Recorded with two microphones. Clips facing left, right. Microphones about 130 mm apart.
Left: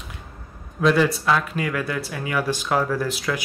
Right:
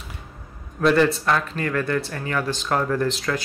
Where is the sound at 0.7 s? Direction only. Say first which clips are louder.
Right 1 dB; 5° left (ahead or behind).